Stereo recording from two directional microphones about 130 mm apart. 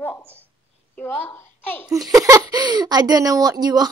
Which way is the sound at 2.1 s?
25° right (ahead or behind).